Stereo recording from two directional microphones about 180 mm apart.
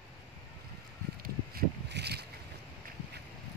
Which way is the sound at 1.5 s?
65° right (ahead or behind).